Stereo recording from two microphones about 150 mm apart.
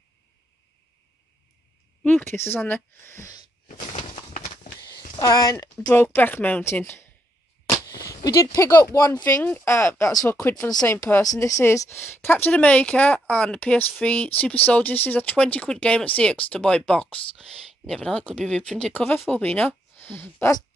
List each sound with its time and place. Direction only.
2.0 s speech: 10° left (ahead or behind)
3.6 s bird: 55° left (ahead or behind)
4.8 s a sound: 90° left
5.1 s a woman's voice: 25° left (ahead or behind)
5.8 s speech: 10° left (ahead or behind)
8.0 s a sound: 20° left (ahead or behind)
8.5 s speech: 15° left (ahead or behind)